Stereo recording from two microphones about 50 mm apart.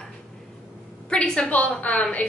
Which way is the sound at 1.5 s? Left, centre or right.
Left.